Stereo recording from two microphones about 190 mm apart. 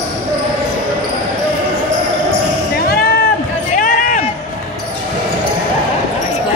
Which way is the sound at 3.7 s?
45° left (ahead or behind).